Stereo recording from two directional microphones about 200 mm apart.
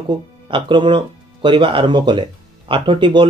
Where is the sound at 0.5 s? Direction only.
25° right (ahead or behind).